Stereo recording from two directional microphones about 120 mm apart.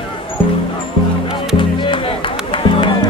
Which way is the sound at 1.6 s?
45° left (ahead or behind).